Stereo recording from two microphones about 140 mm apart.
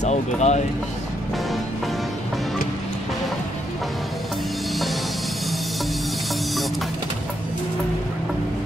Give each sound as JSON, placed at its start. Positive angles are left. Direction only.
{"t": 0.0, "sound": "speech", "side_deg": 55}